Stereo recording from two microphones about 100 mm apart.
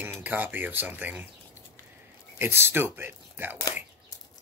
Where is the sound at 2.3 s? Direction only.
25° right (ahead or behind).